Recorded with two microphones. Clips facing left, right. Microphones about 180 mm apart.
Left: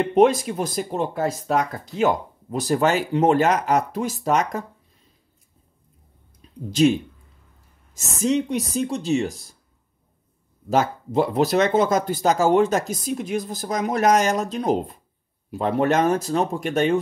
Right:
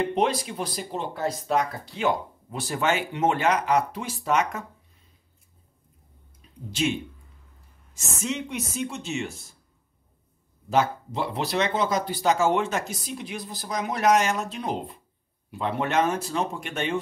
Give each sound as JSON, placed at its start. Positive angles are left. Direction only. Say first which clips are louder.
{"t": 0.1, "sound": "speech", "louder": "left 8 dB", "side_deg": 50}
{"t": 6.7, "sound": "speech", "louder": "left 9 dB", "side_deg": 40}
{"t": 10.7, "sound": "speech", "louder": "left 3 dB", "side_deg": 45}